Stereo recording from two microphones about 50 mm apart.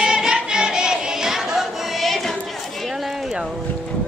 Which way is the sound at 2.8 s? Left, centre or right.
Centre.